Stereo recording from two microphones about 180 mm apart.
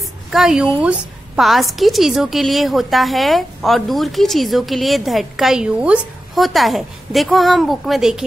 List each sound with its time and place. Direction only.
0.3 s a woman's voice: centre (ahead or behind)